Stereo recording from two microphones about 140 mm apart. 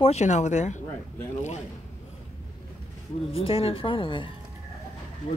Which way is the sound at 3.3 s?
45° left (ahead or behind).